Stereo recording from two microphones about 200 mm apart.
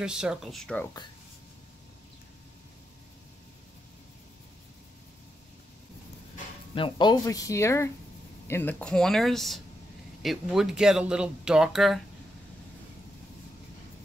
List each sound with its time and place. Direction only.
0.0 s speech: 5° right (ahead or behind)
6.7 s speech: 25° left (ahead or behind); by 12.0 s centre (ahead or behind)